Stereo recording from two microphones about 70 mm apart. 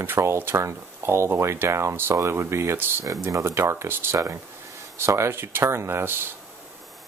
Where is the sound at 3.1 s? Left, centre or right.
Right.